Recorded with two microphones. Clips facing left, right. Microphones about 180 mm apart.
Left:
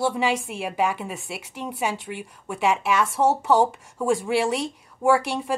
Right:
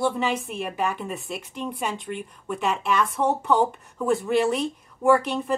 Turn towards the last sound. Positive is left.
turn(degrees=10)  # may be behind; listen again after turning